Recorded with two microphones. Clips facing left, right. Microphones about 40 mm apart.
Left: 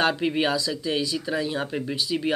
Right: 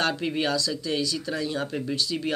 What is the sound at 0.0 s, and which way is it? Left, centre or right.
Speech, centre.